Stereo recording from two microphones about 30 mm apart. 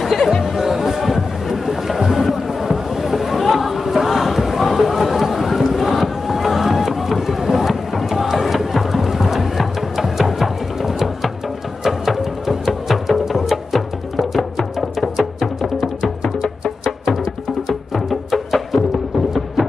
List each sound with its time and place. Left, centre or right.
0.0 s music: centre
0.6 s music: centre
2.3 s a sound: centre
11.8 s music: centre
14.8 s music: centre
16.0 s music: centre
17.6 s music: centre